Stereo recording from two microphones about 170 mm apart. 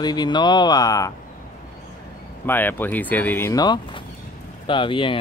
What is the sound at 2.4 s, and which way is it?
Speech, 10° left (ahead or behind).